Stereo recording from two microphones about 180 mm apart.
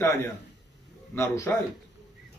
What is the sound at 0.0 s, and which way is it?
A man's voice, 10° left (ahead or behind).